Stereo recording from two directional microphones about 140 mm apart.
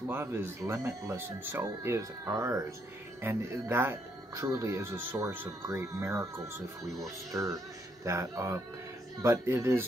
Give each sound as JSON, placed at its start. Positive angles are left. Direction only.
{"t": 0.0, "sound": "speech", "side_deg": -15}